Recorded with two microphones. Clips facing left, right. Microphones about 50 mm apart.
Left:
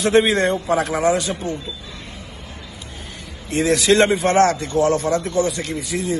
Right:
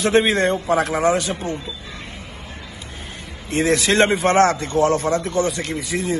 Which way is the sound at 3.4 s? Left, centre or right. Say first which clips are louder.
Left 2 dB; right.